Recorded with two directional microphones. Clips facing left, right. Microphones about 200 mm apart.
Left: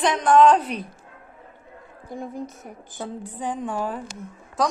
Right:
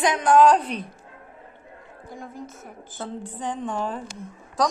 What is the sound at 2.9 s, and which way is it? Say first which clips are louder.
A woman's voice: even; 10° left (ahead or behind).